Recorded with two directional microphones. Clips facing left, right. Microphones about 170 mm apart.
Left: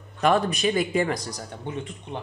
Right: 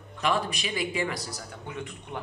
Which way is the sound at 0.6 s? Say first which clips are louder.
Left 7 dB; 45° left (ahead or behind).